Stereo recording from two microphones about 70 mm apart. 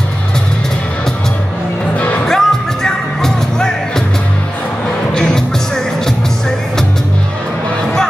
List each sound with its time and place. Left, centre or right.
2.0 s music: left
2.2 s music: centre
5.1 s music: centre